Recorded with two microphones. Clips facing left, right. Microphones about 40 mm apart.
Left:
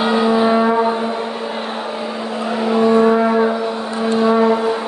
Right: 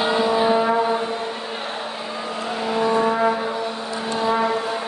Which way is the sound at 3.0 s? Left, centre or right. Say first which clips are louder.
Left 6 dB; left.